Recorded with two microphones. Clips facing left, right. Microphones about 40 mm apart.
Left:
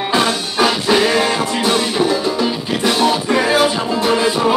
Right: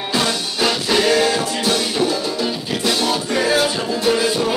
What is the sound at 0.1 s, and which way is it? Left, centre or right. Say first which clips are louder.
Music: left 2 dB; centre.